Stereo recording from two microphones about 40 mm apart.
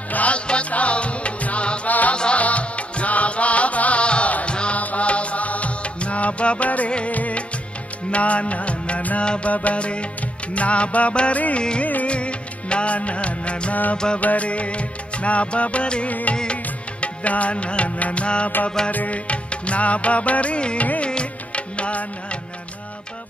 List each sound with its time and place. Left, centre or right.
0.1 s music: left
1.9 s music: left
2.1 s music: left
9.2 s music: left
9.5 s music: left
11.8 s music of bollywood: left
13.9 s music: left
14.2 s music: left
16.1 s music: left